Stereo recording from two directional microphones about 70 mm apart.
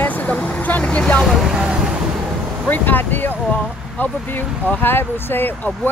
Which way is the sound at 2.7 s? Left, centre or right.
Left.